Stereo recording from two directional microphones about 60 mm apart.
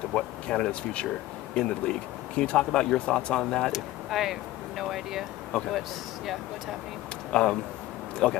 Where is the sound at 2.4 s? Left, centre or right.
Centre.